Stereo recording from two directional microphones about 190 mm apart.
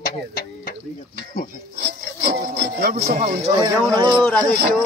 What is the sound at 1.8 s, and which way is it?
Music, 55° right (ahead or behind).